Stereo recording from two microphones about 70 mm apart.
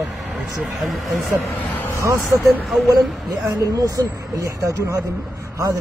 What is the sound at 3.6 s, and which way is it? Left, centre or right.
Speech, right.